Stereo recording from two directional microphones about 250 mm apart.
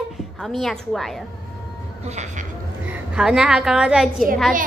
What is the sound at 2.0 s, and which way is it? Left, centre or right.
Speech, right.